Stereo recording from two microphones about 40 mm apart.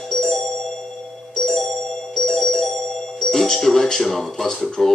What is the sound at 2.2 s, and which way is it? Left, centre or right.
Music, centre.